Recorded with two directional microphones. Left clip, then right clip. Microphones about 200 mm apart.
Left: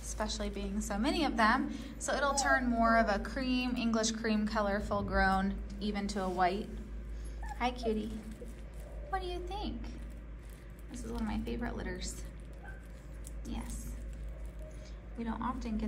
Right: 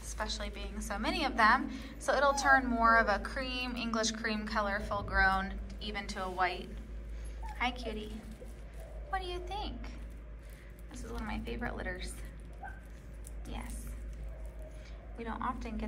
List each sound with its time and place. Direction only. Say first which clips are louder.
0.0 s a woman's voice: left 1 dB; 20° left (ahead or behind)
9.1 s a child's voice: even; 20° left (ahead or behind)
11.2 s a woman's voice: right 1 dB; 20° left (ahead or behind)
13.5 s a woman's voice: left 1 dB; 15° left (ahead or behind)
15.1 s a woman's voice: right 1 dB; 15° left (ahead or behind)